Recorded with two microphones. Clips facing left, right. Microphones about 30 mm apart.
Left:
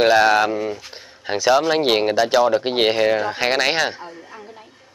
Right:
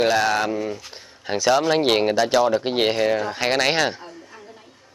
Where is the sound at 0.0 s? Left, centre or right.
Centre.